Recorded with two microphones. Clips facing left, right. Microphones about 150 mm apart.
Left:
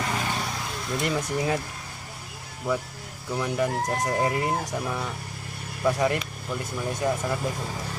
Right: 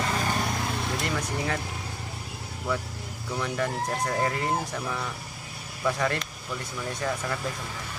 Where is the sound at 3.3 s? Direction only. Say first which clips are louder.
Left 3 dB; 10° left (ahead or behind).